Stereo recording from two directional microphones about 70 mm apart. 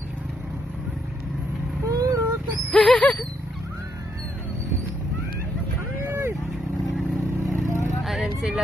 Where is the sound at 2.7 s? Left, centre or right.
Centre.